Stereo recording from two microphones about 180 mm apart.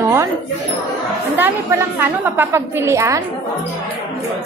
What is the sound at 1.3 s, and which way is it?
A woman's voice, 10° right (ahead or behind).